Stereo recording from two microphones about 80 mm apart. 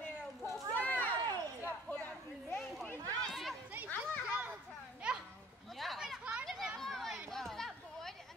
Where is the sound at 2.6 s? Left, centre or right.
Centre.